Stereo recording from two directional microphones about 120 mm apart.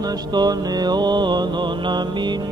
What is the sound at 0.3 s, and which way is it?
Mantra, 35° right (ahead or behind).